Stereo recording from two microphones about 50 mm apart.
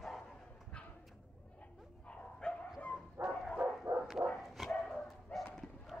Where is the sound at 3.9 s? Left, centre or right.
Right.